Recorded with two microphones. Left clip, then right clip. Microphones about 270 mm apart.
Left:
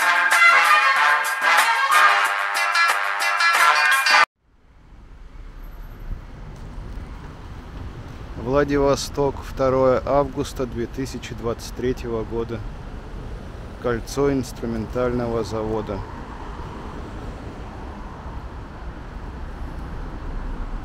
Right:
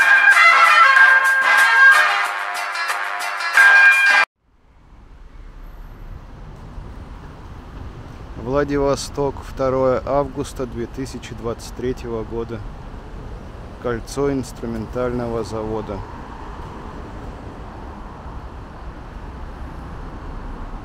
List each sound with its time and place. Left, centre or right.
0.0 s music: centre
8.5 s speech: centre
13.8 s speech: centre